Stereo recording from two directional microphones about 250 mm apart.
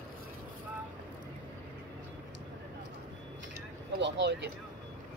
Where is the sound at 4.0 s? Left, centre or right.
Right.